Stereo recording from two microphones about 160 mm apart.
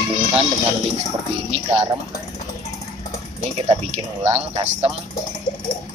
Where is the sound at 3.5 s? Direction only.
40° right (ahead or behind).